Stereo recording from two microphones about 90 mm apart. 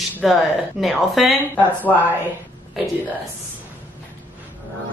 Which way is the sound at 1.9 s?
20° left (ahead or behind).